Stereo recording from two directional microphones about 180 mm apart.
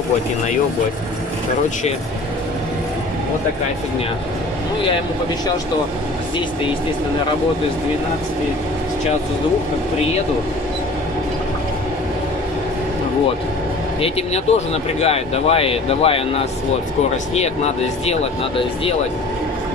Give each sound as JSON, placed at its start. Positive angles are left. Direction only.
{"t": 14.0, "sound": "speech", "side_deg": 35}